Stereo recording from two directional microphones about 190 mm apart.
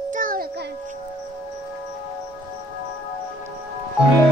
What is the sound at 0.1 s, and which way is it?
Music, 45° right (ahead or behind).